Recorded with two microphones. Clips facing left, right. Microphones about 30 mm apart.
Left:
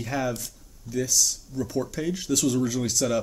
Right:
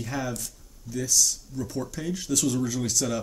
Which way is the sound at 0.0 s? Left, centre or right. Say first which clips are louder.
Left 3 dB; centre.